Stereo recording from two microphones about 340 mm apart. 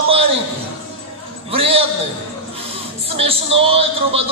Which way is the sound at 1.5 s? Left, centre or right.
Centre.